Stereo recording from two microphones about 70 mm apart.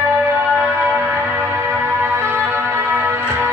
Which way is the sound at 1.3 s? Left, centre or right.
Right.